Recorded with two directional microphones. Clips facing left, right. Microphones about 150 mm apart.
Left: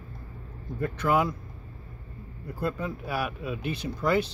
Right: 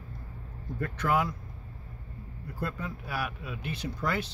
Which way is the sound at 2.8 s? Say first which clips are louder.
Left 4 dB; 20° left (ahead or behind).